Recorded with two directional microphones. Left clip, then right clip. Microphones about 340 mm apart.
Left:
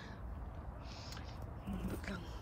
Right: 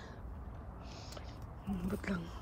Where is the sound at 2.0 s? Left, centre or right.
Centre.